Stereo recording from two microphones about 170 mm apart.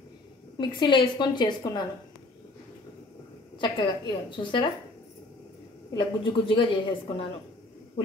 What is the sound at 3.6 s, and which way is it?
A woman's voice, 25° left (ahead or behind).